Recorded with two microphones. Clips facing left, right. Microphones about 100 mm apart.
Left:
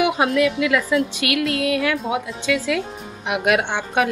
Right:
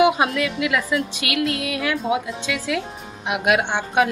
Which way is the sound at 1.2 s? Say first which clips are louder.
Left 2 dB; 25° right (ahead or behind).